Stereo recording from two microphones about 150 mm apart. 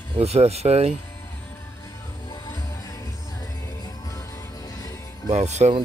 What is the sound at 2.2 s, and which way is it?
Music, 25° left (ahead or behind).